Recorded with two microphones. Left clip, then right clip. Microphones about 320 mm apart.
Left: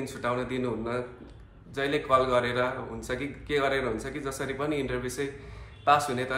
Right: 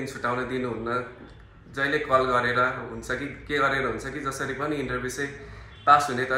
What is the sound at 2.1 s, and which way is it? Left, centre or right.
Speech, centre.